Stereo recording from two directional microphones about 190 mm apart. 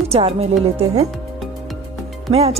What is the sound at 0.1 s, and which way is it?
Speech, 30° right (ahead or behind).